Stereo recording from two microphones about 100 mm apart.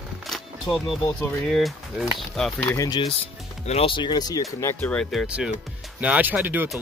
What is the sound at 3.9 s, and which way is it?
Speech, 45° left (ahead or behind).